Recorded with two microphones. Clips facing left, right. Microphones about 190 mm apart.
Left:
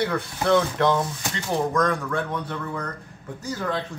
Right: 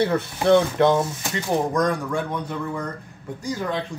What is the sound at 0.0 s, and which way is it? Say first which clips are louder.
A man's voice: right 4 dB; 25° right (ahead or behind).